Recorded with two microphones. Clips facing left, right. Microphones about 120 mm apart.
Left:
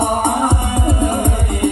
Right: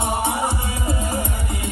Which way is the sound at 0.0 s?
60° left (ahead or behind).